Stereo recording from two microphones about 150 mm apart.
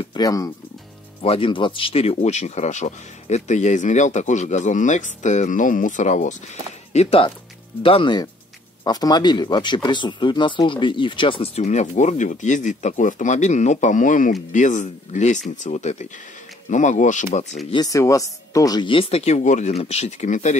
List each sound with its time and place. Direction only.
0.0 s speech: 25° left (ahead or behind)
1.2 s speech: 35° left (ahead or behind); by 6.3 s 55° left (ahead or behind)
6.9 s speech: 45° left (ahead or behind)
17.6 s speech: 25° left (ahead or behind); by 20.5 s 55° left (ahead or behind)